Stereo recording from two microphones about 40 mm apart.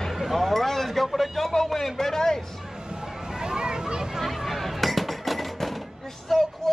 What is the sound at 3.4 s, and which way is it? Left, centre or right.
Children playing, centre.